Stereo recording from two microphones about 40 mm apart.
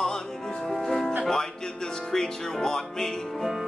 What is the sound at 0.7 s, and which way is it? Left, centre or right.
Music, centre.